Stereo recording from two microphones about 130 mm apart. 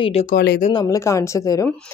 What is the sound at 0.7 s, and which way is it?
Speech, 25° left (ahead or behind).